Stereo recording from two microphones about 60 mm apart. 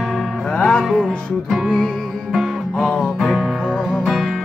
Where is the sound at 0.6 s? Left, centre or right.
Centre.